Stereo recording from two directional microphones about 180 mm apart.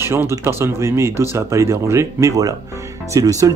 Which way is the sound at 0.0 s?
15° right (ahead or behind).